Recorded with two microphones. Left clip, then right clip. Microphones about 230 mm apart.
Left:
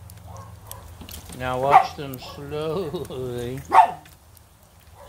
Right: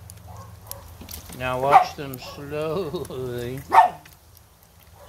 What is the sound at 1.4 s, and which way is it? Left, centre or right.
Speech, right.